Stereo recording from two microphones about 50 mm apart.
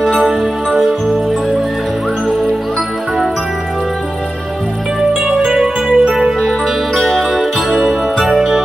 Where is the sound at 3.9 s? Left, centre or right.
Centre.